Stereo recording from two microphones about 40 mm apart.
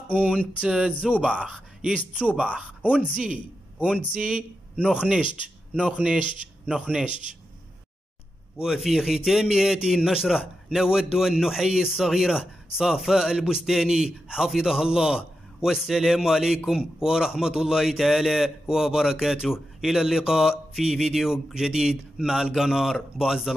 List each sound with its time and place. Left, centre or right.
0.1 s speech: right
2.1 s speech: right
3.1 s a man's voice: centre
8.7 s a man's voice: centre